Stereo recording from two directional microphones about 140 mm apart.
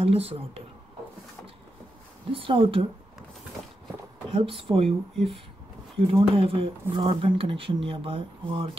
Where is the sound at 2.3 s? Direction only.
40° right (ahead or behind).